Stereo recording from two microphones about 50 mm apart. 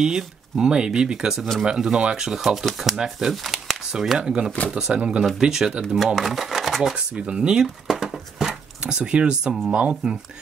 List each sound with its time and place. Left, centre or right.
0.0 s speech: centre
2.2 s speech: centre
4.9 s speech: right
5.4 s speech: centre
7.2 s speech: centre
7.6 s a sound: centre
8.8 s speech: centre